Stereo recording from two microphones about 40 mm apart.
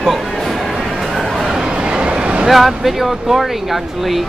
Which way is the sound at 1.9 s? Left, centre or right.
Right.